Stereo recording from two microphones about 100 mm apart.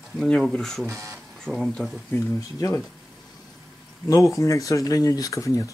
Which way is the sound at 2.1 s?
30° left (ahead or behind).